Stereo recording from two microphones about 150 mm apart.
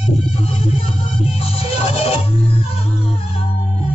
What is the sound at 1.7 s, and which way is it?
Music, 40° left (ahead or behind).